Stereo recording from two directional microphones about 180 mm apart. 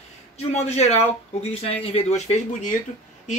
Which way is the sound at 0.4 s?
35° left (ahead or behind).